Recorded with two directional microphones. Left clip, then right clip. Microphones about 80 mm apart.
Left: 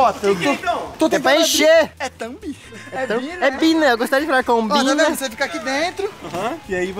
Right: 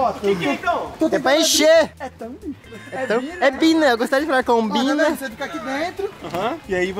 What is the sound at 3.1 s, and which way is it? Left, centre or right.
Speech, centre.